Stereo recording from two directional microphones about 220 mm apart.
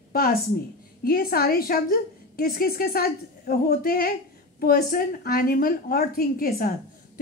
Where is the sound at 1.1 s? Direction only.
45° left (ahead or behind).